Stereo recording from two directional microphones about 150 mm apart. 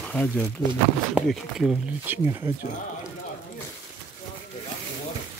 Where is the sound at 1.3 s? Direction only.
Centre (ahead or behind).